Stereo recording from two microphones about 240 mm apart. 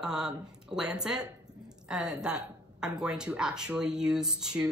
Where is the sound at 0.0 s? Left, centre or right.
Centre.